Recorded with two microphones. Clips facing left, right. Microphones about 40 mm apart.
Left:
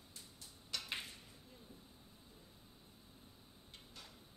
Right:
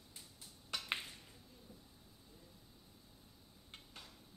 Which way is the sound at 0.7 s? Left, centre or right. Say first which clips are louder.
Right 1 dB; right.